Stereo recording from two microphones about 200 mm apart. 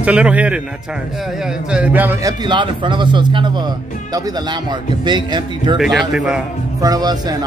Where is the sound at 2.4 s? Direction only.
25° right (ahead or behind).